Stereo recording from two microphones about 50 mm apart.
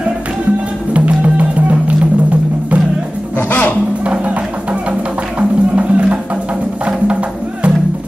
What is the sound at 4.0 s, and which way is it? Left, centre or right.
Music, right.